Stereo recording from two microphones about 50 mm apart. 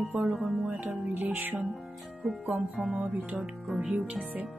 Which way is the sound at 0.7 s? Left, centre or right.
Right.